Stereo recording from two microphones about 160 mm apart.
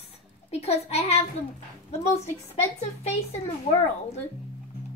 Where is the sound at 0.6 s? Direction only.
40° left (ahead or behind).